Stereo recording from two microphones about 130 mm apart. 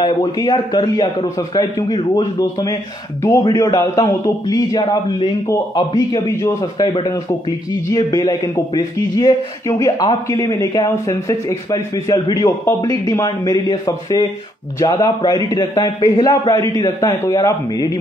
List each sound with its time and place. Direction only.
0.0 s a man's voice: 30° left (ahead or behind)
3.3 s a man's voice: 25° left (ahead or behind)